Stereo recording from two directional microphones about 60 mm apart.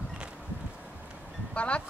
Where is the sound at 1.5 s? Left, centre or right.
Centre.